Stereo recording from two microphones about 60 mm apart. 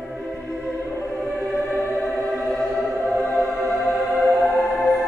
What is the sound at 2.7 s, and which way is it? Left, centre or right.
Music, left.